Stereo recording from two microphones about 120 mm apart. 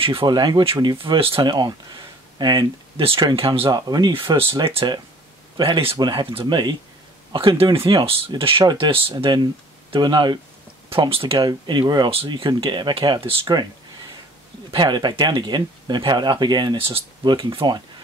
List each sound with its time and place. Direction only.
0.0 s speech: 50° right (ahead or behind)
3.0 s speech: 45° right (ahead or behind)
3.7 s speech: 35° right (ahead or behind)
4.1 s speech: 45° right (ahead or behind)
10.9 s speech: 50° right (ahead or behind)
12.1 s speech: 50° right (ahead or behind)
14.7 s speech: 40° right (ahead or behind)